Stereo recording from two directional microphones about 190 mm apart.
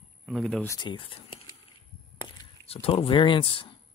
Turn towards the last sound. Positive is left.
turn(degrees=25)  # may be behind; listen again after turning